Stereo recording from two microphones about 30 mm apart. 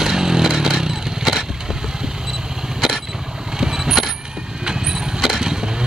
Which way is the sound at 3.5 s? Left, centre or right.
Centre.